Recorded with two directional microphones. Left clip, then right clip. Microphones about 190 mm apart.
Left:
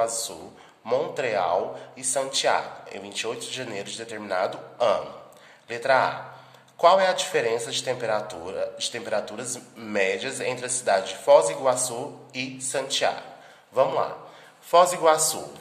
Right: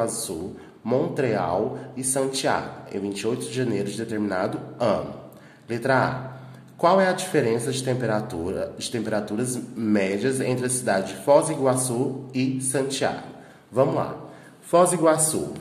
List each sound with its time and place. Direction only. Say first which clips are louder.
0.8 s a man's voice: right 2 dB; 10° left (ahead or behind)